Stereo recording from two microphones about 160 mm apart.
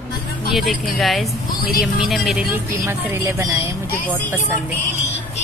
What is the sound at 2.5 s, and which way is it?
A woman's voice, 15° right (ahead or behind).